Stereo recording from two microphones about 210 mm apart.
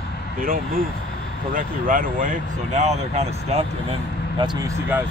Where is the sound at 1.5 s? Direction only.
40° right (ahead or behind).